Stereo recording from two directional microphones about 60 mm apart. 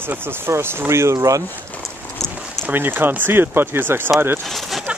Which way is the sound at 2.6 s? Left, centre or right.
Right.